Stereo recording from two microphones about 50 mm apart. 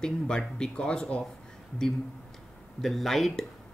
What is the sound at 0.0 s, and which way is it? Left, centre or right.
Speech, centre.